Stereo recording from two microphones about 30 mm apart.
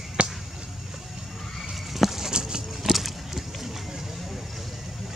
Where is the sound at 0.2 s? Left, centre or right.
Right.